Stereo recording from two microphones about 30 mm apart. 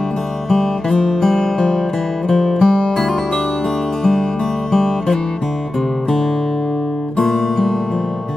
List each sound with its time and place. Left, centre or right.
0.5 s music: centre
4.0 s music: centre
7.2 s music: centre